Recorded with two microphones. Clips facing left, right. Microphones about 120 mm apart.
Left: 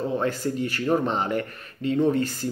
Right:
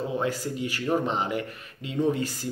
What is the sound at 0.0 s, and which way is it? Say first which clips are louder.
A man's voice: left 3 dB; 10° right (ahead or behind).